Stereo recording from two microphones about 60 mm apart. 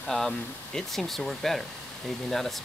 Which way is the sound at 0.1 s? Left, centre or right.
Left.